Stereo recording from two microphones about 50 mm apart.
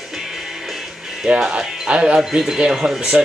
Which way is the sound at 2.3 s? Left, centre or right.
Centre.